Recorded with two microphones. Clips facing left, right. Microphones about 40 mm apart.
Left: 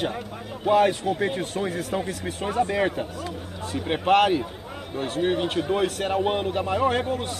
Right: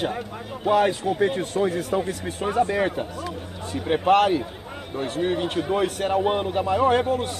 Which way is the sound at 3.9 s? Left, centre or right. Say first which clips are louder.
Right 3 dB; centre.